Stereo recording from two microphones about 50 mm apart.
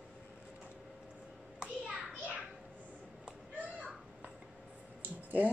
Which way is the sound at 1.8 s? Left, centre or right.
Right.